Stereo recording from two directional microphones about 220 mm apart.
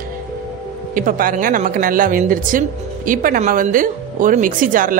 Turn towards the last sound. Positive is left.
turn(degrees=-40)  # may be behind; listen again after turning